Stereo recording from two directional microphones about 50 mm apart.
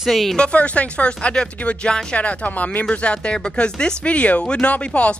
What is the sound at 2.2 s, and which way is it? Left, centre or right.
Speech, left.